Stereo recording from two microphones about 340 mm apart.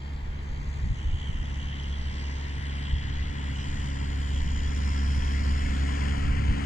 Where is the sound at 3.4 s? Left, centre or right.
Left.